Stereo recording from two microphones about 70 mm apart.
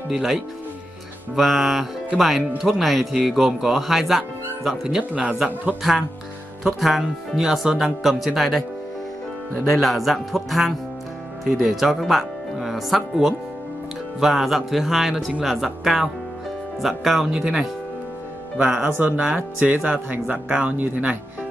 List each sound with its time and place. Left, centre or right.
0.1 s speech: centre
9.8 s speech: centre
18.9 s speech: right